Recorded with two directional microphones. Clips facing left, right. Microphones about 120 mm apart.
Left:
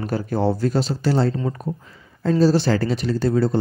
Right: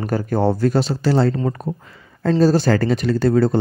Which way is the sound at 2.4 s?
45° right (ahead or behind).